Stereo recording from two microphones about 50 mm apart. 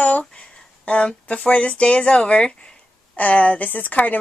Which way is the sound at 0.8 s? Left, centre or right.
Left.